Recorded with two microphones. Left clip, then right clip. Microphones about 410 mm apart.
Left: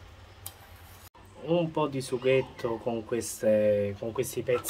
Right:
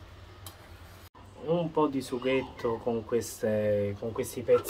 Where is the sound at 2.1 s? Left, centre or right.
Left.